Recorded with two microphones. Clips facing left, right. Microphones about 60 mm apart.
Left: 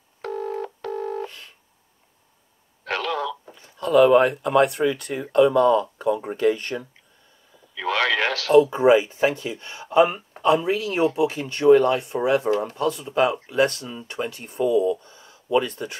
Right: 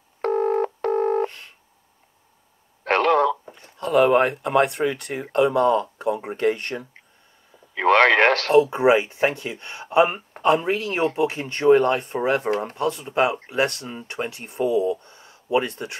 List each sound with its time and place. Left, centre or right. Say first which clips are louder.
0.2 s telephone dialing: right 8 dB; right
2.8 s radio: right 8 dB; right
3.5 s a sound: left 5 dB; right
4.4 s speech: left 1 dB; right
4.6 s speech: left 1 dB; right
7.7 s radio: right 7 dB; right
8.6 s speech: left 1 dB; right
8.9 s speech: left 1 dB; right
14.7 s speech: left 2 dB; right
15.0 s a sound: even; right
15.6 s speech: even; right